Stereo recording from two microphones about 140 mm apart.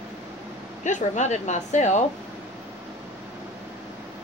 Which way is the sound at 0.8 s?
60° left (ahead or behind).